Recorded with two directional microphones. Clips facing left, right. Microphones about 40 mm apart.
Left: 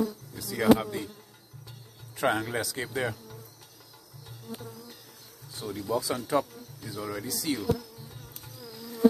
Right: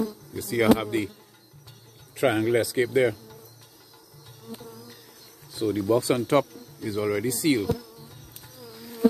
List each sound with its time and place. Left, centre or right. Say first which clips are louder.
0.4 s speech: right 2 dB; right
2.1 s speech: right 6 dB; centre
5.6 s speech: right 8 dB; right
6.2 s speech: right 5 dB; right